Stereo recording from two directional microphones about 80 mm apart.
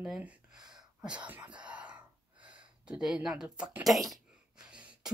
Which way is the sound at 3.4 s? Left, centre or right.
Centre.